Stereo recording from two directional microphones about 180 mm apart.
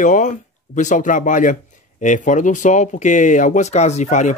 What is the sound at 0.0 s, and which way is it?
A man's voice, 45° left (ahead or behind).